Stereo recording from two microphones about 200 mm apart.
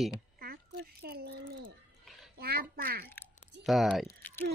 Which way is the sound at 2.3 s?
50° right (ahead or behind).